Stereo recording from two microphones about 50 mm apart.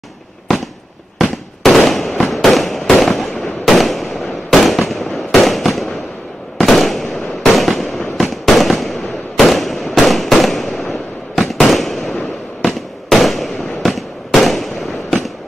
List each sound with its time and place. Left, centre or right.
1.1 s fireworks: centre